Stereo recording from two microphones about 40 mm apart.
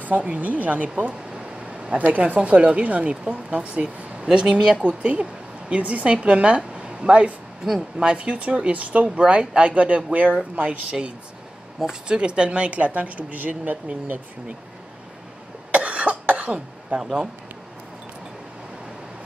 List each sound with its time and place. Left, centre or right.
0.0 s speech: right; by 4.8 s centre
4.8 s speech: right
9.2 s speech: right
15.7 s cough: right
16.9 s speech: right